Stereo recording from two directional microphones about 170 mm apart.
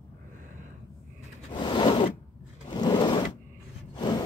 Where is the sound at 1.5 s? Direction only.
30° left (ahead or behind).